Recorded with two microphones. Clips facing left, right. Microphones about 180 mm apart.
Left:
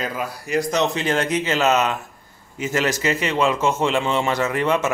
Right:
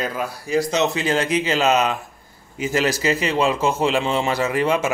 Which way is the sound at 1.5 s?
35° right (ahead or behind).